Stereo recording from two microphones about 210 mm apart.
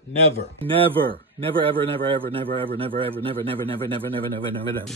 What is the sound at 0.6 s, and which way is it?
A man's voice, 25° right (ahead or behind).